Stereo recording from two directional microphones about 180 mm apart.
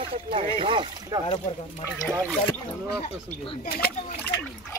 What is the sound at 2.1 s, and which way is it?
Speech, 15° right (ahead or behind).